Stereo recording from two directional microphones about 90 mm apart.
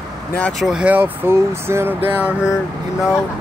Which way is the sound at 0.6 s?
5° right (ahead or behind).